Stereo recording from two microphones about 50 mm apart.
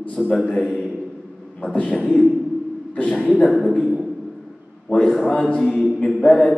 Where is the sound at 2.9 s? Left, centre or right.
Left.